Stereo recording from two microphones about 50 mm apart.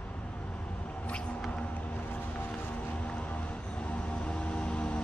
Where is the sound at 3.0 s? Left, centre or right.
Left.